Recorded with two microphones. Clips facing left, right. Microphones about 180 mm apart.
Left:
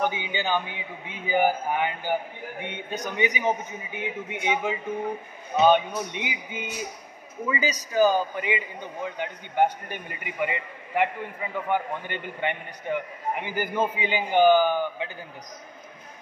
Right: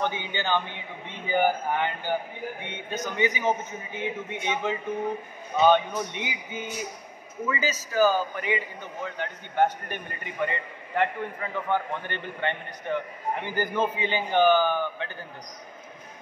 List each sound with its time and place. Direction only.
0.0 s a man's voice: 10° left (ahead or behind)